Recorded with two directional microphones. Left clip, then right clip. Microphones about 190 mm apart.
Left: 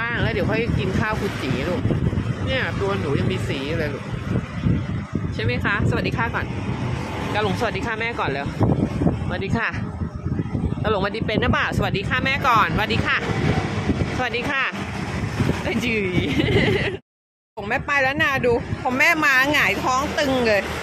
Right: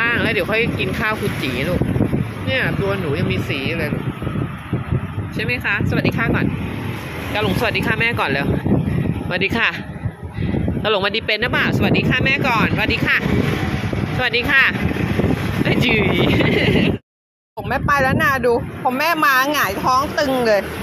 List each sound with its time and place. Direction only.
0.0 s speech: 15° right (ahead or behind)
2.5 s speech: 20° right (ahead or behind)
3.6 s speech: centre (ahead or behind)
5.4 s speech: 5° left (ahead or behind)
7.6 s speech: 10° right (ahead or behind)
10.8 s speech: 10° right (ahead or behind)
14.2 s speech: 5° right (ahead or behind)
17.6 s speech: 10° right (ahead or behind)